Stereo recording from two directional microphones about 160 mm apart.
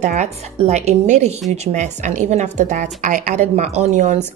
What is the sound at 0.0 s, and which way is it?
Speech, 45° right (ahead or behind).